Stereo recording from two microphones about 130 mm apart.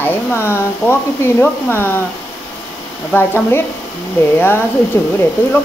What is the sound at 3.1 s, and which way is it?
Speech, 15° left (ahead or behind).